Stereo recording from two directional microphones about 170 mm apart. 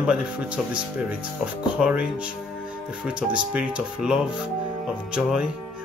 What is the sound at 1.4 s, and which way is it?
Speech, 5° right (ahead or behind).